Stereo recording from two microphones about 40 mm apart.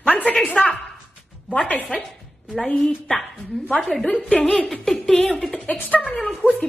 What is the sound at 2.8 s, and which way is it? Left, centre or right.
A woman's voice, centre.